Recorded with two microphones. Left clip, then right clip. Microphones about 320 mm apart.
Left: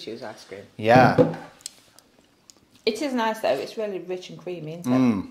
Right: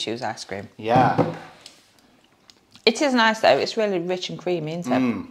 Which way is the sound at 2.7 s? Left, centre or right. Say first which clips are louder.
Right 6 dB; right.